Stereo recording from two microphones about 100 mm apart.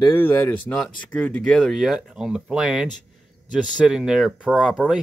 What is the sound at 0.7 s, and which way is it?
Speech, 10° left (ahead or behind).